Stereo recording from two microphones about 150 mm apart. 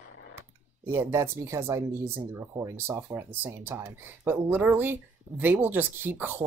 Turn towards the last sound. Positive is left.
turn(degrees=-15)  # may be behind; listen again after turning